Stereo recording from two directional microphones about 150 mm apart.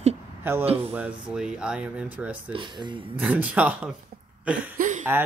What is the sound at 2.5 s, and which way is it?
Speech, 30° right (ahead or behind).